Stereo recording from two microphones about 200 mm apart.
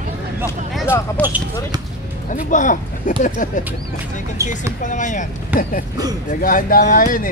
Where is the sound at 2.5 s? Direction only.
40° left (ahead or behind).